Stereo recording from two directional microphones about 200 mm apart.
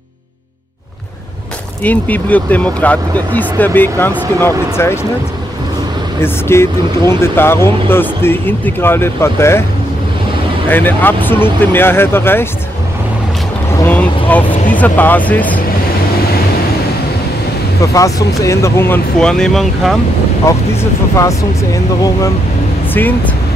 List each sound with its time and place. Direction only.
1.8 s speech: 10° left (ahead or behind)
6.2 s speech: 10° left (ahead or behind)
10.7 s speech: 10° left (ahead or behind)
13.7 s vehicle: 10° left (ahead or behind)
14.7 s speech: 10° left (ahead or behind)
17.9 s speech: 15° left (ahead or behind)
20.5 s speech: 15° left (ahead or behind)
22.9 s speech: 10° left (ahead or behind)